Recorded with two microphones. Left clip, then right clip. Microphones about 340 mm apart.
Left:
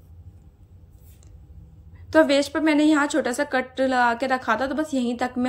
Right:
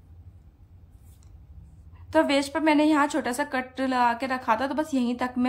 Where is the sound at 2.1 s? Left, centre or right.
Centre.